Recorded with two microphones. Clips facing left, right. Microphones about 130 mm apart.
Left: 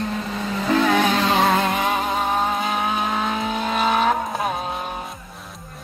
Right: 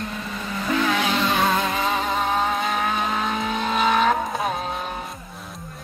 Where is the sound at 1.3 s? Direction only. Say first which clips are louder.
Left 3 dB; 30° left (ahead or behind).